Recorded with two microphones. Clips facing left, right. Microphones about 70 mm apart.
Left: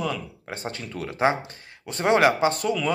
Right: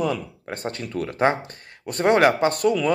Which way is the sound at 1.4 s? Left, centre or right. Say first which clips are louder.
Right 4 dB; right.